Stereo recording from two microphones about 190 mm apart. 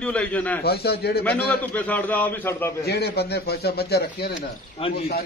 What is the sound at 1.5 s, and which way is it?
A man's voice, 10° left (ahead or behind).